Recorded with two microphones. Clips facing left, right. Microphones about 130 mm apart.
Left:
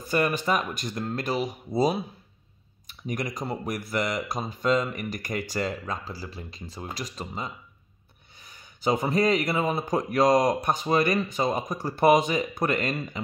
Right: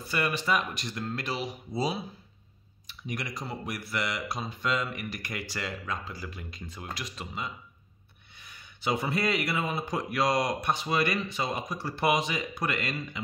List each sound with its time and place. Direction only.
0.0 s a man's voice: 45° left (ahead or behind)